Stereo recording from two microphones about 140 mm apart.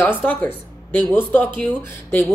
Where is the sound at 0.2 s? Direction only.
15° left (ahead or behind).